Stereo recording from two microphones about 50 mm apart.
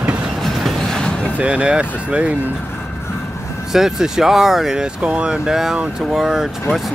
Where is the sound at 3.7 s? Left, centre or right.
Centre.